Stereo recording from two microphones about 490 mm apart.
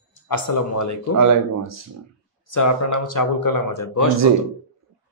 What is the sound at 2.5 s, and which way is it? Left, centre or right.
Speech, left.